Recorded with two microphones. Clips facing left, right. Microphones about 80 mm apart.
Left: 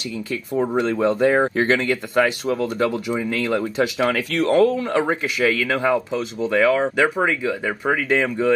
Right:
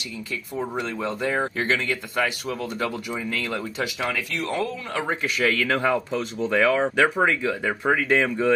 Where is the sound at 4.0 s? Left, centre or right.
Left.